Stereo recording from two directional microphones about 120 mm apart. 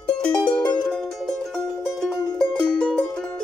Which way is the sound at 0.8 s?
Centre (ahead or behind).